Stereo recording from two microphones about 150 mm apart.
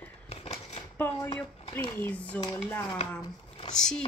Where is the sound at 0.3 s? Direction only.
40° left (ahead or behind).